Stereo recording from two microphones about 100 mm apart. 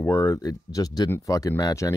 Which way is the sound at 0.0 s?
25° left (ahead or behind).